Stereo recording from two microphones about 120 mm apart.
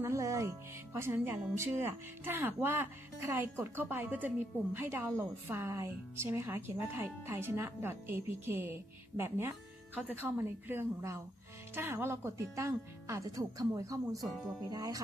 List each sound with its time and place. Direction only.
0.0 s speech: 25° right (ahead or behind)